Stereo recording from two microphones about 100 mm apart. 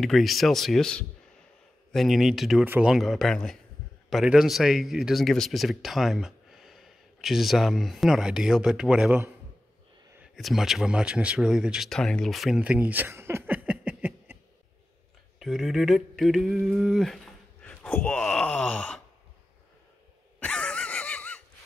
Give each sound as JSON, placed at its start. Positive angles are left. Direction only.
{"t": 0.0, "sound": "a man's voice", "side_deg": 0}
{"t": 2.6, "sound": "speech", "side_deg": -20}
{"t": 2.9, "sound": "a man's voice", "side_deg": 0}
{"t": 10.3, "sound": "a man's voice", "side_deg": 0}
{"t": 11.9, "sound": "a man's voice", "side_deg": 5}
{"t": 12.6, "sound": "a sound", "side_deg": -15}
{"t": 15.3, "sound": "a sound", "side_deg": 0}
{"t": 17.6, "sound": "speech", "side_deg": 15}
{"t": 20.3, "sound": "a sound", "side_deg": 10}